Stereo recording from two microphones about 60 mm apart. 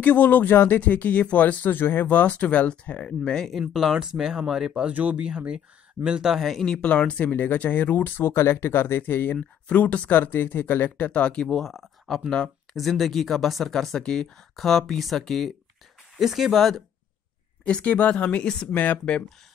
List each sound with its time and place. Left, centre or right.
0.0 s speech: left
3.7 s speech: centre
4.9 s speech: right; by 6.6 s centre
6.6 s speech: centre
10.1 s speech: left
11.1 s speech: centre
11.4 s speech: centre
17.6 s speech: centre